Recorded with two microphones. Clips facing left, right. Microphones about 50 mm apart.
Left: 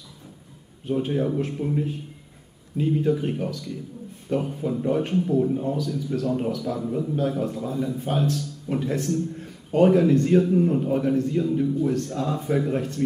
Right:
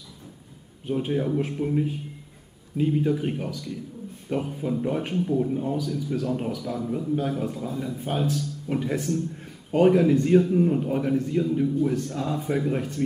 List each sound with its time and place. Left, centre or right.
0.8 s a man's voice: centre